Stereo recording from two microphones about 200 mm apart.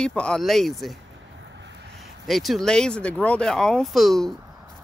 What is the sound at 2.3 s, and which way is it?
Speech, centre (ahead or behind).